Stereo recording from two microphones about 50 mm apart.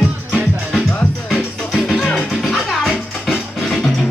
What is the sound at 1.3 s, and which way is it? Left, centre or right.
Music, centre.